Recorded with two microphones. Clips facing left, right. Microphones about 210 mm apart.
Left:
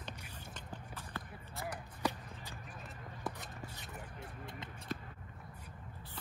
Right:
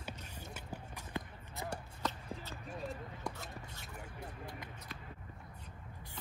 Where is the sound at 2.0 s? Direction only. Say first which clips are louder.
Left 3 dB; 10° left (ahead or behind).